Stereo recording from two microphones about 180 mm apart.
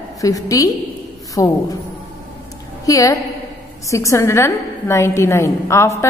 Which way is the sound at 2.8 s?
20° left (ahead or behind).